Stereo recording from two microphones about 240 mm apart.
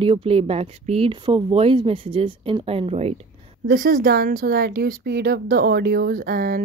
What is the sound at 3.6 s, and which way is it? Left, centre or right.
Speech, right.